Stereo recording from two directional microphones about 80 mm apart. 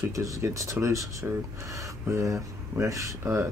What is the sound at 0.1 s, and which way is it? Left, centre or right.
Speech, right.